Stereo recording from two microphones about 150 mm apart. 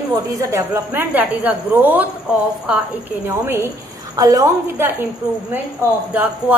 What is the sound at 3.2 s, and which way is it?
A woman's voice, 15° right (ahead or behind).